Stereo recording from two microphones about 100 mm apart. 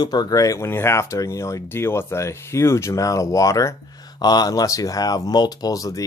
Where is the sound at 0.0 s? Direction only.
45° left (ahead or behind).